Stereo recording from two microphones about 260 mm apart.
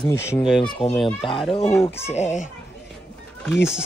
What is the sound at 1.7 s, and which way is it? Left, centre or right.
Speech, centre.